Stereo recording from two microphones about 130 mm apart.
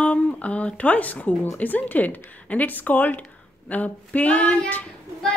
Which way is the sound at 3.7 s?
10° left (ahead or behind).